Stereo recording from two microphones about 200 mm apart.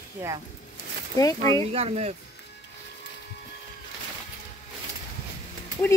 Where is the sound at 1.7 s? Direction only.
30° right (ahead or behind).